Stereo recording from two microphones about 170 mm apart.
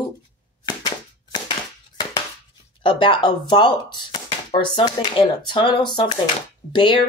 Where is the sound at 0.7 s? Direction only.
25° left (ahead or behind).